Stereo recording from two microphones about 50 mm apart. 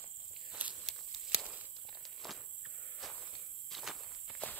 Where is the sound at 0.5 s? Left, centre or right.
Right.